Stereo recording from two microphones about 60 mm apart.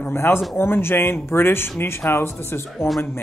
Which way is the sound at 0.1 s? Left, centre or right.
Left.